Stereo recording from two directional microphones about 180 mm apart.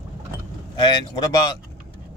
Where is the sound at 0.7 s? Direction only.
25° left (ahead or behind).